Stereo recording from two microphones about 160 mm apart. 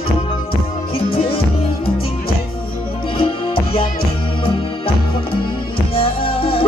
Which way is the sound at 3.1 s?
35° left (ahead or behind).